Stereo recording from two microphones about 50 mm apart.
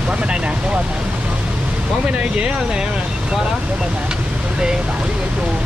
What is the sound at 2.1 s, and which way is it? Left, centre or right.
Speech, right.